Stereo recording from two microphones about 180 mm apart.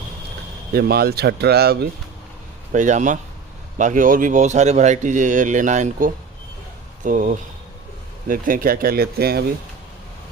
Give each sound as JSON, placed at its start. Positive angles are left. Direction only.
{"t": 0.7, "sound": "speech", "side_deg": -60}
{"t": 2.7, "sound": "speech", "side_deg": -45}